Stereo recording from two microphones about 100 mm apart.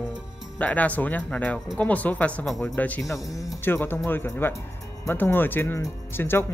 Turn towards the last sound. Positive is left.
turn(degrees=20)  # may be behind; listen again after turning